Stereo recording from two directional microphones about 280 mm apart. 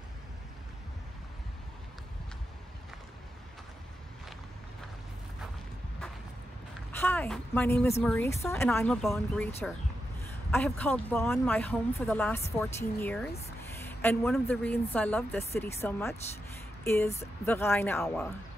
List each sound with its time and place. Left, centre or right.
7.0 s a woman's voice: centre
10.5 s a woman's voice: centre
16.8 s music: centre
17.5 s a woman's voice: centre